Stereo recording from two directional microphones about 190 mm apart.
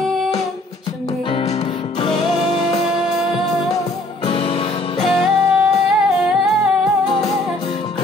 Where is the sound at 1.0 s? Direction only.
30° left (ahead or behind).